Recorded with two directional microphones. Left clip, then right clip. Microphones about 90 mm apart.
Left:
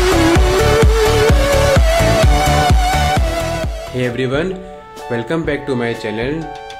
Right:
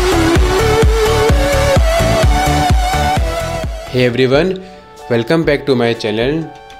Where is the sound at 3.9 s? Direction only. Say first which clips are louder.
Right 7 dB; 70° right (ahead or behind).